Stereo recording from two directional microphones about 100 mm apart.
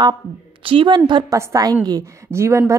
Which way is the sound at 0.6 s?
55° right (ahead or behind).